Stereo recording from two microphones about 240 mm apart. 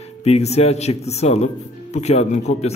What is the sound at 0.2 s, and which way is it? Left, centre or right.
A man's voice, left.